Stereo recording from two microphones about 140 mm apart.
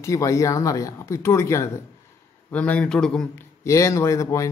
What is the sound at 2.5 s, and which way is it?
Speech, 10° left (ahead or behind).